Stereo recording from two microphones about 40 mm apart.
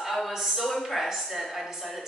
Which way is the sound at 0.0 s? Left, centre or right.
Centre.